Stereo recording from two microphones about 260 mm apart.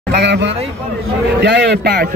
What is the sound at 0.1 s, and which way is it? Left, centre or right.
A man's voice, right.